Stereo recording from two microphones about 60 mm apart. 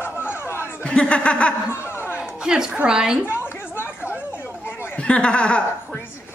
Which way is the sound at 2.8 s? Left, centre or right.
Centre.